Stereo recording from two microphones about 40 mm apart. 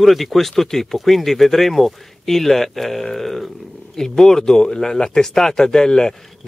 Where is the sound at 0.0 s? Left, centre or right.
Centre.